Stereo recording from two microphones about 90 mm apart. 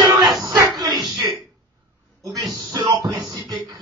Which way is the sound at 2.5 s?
50° right (ahead or behind).